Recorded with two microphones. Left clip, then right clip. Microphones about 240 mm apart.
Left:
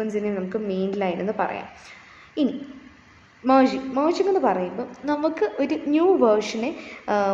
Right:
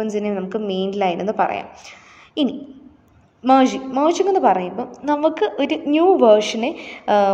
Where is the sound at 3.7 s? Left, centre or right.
Right.